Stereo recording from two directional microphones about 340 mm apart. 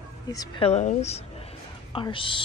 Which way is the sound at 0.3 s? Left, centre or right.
Centre.